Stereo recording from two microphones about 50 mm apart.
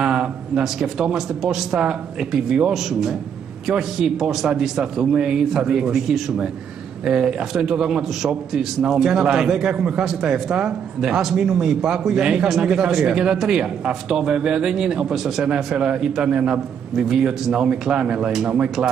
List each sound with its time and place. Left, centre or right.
0.0 s a man's voice: centre
9.8 s a man's voice: centre
15.4 s a man's voice: centre